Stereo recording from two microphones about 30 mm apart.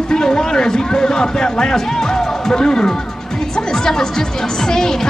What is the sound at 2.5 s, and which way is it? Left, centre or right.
Speech, left.